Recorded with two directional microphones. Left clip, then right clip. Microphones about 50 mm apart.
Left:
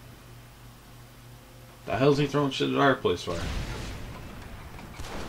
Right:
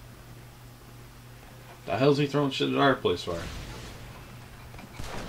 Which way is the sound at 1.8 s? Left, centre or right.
Centre.